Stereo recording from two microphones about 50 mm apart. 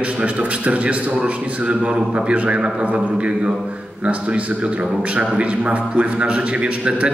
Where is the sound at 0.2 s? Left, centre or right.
Right.